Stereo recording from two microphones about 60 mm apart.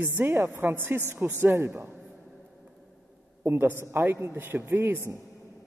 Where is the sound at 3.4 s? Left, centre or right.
Right.